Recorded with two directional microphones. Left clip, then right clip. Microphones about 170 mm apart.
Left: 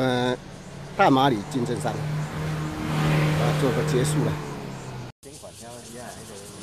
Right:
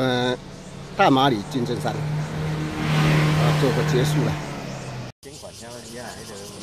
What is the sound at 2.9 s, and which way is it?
Vehicle, 45° right (ahead or behind).